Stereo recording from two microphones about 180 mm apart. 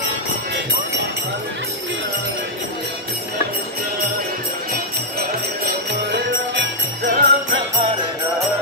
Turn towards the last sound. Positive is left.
turn(degrees=-80)